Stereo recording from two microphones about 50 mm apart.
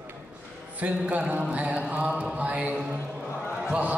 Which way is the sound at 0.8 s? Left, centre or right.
Right.